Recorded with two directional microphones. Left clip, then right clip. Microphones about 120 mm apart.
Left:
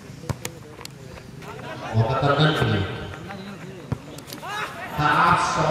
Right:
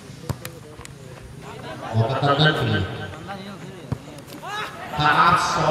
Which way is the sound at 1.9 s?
5° right (ahead or behind).